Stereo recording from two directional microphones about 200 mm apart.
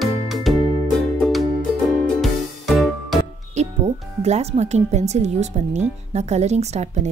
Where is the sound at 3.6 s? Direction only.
35° right (ahead or behind).